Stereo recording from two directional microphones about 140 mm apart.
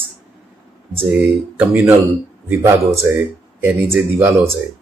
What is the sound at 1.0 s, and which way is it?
Speech, 10° right (ahead or behind).